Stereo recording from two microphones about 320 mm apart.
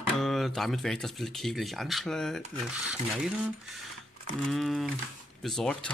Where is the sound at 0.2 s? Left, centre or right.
Centre.